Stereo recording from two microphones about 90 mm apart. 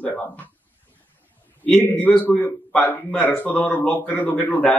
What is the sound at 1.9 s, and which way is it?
A man's voice, 15° left (ahead or behind).